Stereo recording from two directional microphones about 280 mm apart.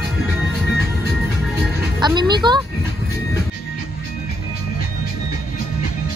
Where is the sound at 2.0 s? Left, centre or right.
Centre.